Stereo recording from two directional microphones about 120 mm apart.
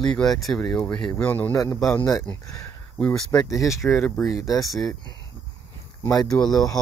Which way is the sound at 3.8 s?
10° left (ahead or behind).